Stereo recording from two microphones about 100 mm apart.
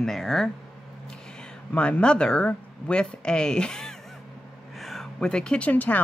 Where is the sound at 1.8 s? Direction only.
10° left (ahead or behind).